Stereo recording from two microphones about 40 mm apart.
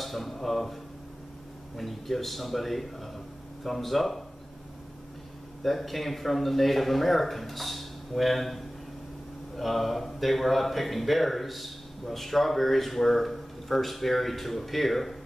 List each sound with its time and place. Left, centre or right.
0.0 s speech: centre
1.8 s speech: centre
5.6 s speech: centre